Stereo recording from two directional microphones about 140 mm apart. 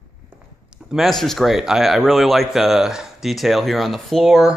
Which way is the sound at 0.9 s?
Centre (ahead or behind).